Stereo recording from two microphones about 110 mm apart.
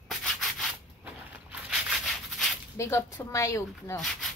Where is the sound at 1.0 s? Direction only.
20° right (ahead or behind).